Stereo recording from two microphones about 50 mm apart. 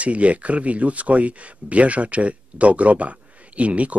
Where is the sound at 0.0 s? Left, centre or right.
Right.